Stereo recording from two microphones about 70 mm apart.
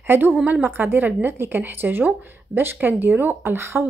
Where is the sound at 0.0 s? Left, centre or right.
Right.